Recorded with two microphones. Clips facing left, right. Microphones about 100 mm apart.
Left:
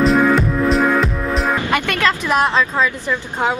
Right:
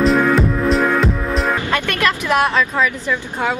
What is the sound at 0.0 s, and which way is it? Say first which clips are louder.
Music: even; centre (ahead or behind).